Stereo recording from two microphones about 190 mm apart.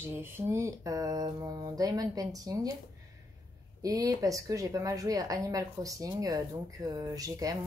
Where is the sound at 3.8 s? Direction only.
20° right (ahead or behind).